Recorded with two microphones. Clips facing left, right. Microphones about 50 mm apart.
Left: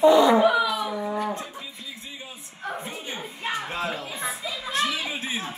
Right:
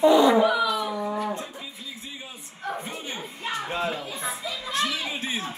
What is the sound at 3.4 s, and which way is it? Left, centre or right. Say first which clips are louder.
Music: left 1 dB; centre.